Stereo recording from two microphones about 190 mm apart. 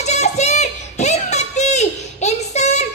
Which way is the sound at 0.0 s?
35° left (ahead or behind).